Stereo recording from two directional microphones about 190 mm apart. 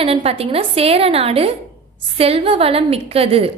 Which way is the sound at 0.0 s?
30° right (ahead or behind).